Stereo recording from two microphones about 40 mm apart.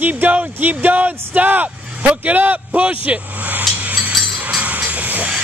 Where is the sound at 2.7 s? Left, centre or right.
Right.